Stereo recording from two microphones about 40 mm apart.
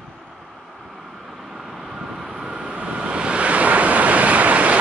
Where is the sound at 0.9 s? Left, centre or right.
Centre.